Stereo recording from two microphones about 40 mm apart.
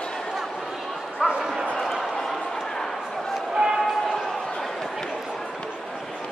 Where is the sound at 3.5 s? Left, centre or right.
Centre.